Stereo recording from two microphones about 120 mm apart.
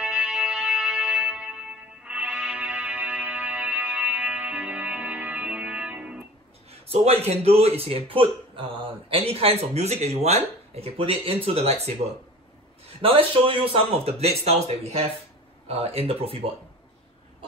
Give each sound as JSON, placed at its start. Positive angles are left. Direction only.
{"t": 0.0, "sound": "music", "side_deg": -5}
{"t": 6.7, "sound": "a man's voice", "side_deg": -60}
{"t": 13.0, "sound": "a man's voice", "side_deg": -50}